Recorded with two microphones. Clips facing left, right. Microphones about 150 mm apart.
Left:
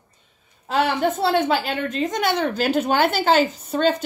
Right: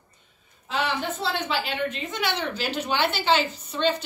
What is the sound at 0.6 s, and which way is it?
Speech, 45° left (ahead or behind).